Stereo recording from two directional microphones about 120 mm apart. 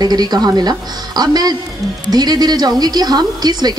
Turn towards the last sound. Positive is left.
turn(degrees=-35)  # may be behind; listen again after turning